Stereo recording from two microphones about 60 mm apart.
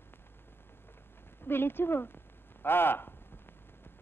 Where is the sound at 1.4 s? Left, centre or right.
Left.